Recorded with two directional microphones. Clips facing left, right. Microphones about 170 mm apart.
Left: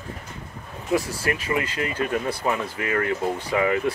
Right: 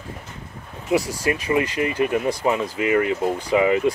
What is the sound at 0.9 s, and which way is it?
Speech, 15° right (ahead or behind).